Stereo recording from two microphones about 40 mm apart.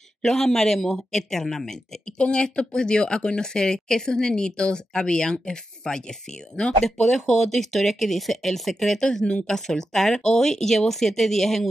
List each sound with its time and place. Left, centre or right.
0.2 s speech: centre
2.1 s speech: left
7.0 s speech: centre
9.0 s speech: left